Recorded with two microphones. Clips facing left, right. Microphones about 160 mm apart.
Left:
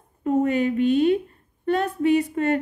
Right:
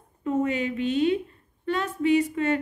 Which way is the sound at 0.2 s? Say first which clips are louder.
Left 4 dB; 45° left (ahead or behind).